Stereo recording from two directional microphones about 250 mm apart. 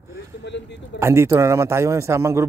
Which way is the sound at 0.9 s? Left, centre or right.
Centre.